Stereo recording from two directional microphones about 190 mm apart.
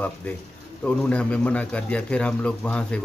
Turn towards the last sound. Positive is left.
turn(degrees=5)  # may be behind; listen again after turning